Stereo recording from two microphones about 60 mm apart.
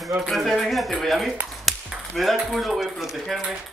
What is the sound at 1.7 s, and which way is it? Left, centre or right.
Ping, centre.